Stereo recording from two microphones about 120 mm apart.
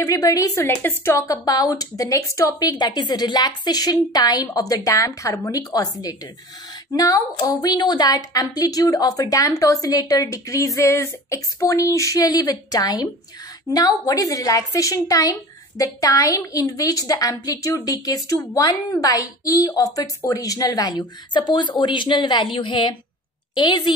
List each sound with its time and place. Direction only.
0.0 s a woman's voice: 30° left (ahead or behind)